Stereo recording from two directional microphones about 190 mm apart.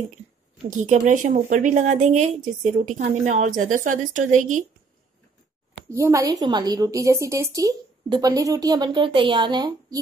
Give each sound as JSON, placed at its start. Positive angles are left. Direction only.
{"t": 0.7, "sound": "a woman's voice", "side_deg": -40}
{"t": 5.9, "sound": "a woman's voice", "side_deg": -15}